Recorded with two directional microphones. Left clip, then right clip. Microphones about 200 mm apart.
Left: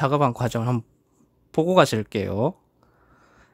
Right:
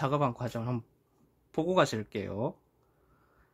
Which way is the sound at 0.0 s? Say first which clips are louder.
Left 9 dB; 30° left (ahead or behind).